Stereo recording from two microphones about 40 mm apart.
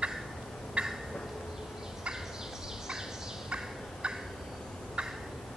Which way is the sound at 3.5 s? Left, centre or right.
Right.